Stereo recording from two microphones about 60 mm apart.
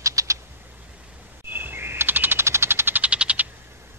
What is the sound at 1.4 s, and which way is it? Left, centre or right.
Chirp, right.